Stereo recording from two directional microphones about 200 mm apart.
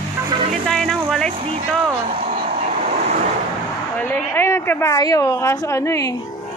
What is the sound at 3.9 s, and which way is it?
A woman's voice, 10° left (ahead or behind).